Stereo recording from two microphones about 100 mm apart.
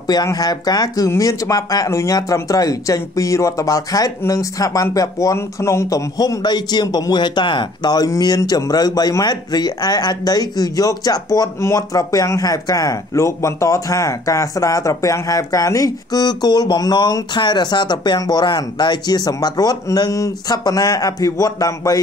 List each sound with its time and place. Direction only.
0.1 s speech: 40° left (ahead or behind)